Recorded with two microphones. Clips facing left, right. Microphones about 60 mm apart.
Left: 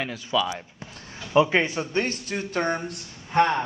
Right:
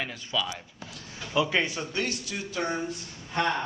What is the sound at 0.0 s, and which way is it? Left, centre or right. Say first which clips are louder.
Speech: left 6 dB; centre.